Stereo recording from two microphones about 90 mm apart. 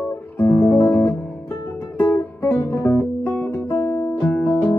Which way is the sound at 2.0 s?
25° left (ahead or behind).